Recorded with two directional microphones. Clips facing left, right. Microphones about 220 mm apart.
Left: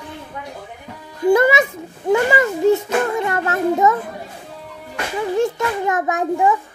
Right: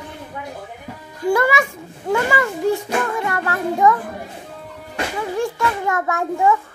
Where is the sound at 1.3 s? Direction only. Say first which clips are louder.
Left 4 dB; 20° left (ahead or behind).